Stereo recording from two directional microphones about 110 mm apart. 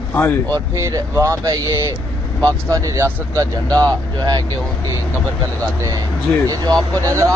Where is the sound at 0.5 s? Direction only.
30° right (ahead or behind).